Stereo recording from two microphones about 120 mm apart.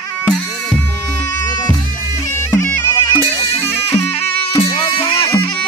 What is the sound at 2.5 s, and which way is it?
Bagpipes, 20° left (ahead or behind).